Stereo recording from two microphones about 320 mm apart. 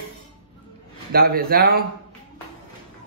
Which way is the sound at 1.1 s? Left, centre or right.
Right.